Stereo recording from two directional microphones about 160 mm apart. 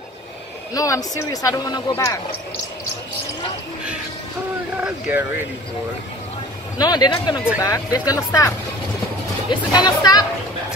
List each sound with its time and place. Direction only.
0.7 s speech: 20° left (ahead or behind)
4.7 s speech: 10° right (ahead or behind)
6.8 s speech: 25° left (ahead or behind)